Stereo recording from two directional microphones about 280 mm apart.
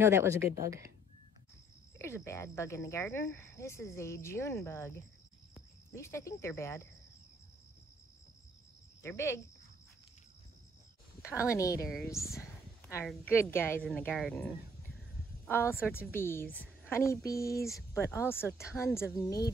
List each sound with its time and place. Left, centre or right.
0.0 s speech: centre
2.0 s speech: centre
9.0 s speech: centre
11.4 s speech: centre
12.4 s a woman's voice: centre